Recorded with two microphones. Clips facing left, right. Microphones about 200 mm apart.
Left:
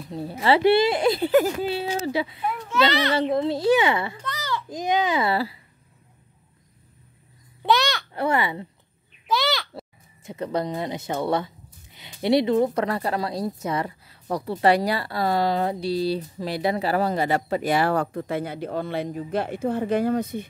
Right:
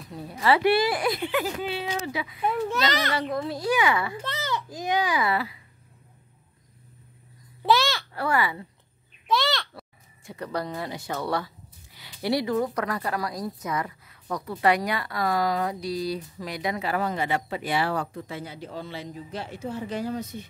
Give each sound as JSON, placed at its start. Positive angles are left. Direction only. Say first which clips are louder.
{"t": 0.1, "sound": "speech", "louder": "left 2 dB", "side_deg": 30}
{"t": 1.3, "sound": "speech", "louder": "left 8 dB", "side_deg": 40}
{"t": 2.7, "sound": "a child's voice", "louder": "left 5 dB", "side_deg": -45}
{"t": 3.1, "sound": "speech", "louder": "left 6 dB", "side_deg": 25}
{"t": 4.2, "sound": "a sound", "louder": "even", "side_deg": -25}
{"t": 4.6, "sound": "speech", "louder": "left 4 dB", "side_deg": 20}
{"t": 7.6, "sound": "a sound", "louder": "left 1 dB", "side_deg": 0}
{"t": 8.1, "sound": "speech", "louder": "left 4 dB", "side_deg": 20}
{"t": 9.3, "sound": "a sound", "louder": "left 1 dB", "side_deg": 0}
{"t": 9.8, "sound": "speech", "louder": "left 6 dB", "side_deg": 20}